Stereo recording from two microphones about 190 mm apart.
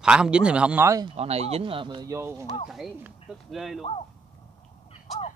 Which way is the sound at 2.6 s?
Centre (ahead or behind).